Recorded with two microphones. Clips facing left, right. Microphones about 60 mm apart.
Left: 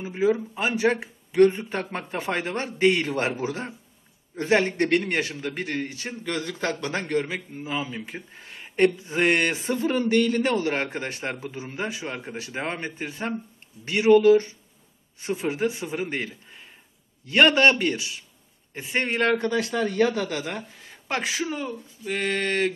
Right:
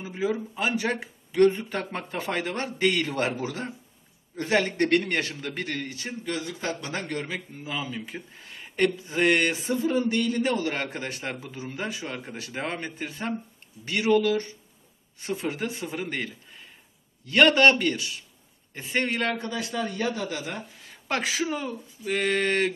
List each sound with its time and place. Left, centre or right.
0.0 s a man's voice: left
5.8 s speech: left
6.2 s speech: left
6.9 s a man's voice: left
7.2 s speech: centre
9.7 s speech: left
10.5 s speech: left
17.3 s a man's voice: centre
19.0 s a man's voice: left
19.4 s a man's voice: left
20.2 s speech: left
21.1 s speech: centre